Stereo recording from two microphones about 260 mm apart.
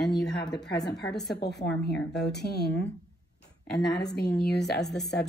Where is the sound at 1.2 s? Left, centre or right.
Left.